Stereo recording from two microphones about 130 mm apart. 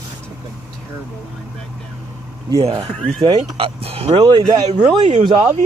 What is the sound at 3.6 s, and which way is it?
Speech, 50° right (ahead or behind).